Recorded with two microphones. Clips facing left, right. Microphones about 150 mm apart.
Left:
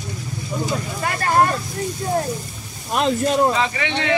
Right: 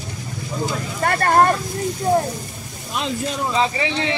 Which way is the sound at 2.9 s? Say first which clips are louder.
Left 6 dB; 55° left (ahead or behind).